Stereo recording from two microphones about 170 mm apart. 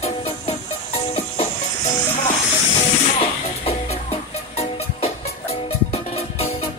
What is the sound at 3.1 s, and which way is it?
Music, 35° left (ahead or behind).